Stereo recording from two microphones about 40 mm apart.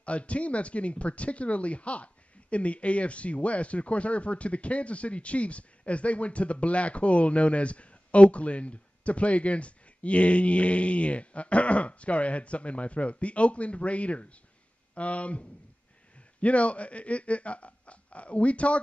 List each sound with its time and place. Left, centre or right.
0.0 s speech: left